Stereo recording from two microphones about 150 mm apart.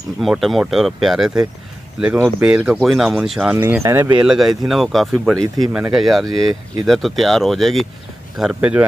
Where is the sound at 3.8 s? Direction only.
15° right (ahead or behind).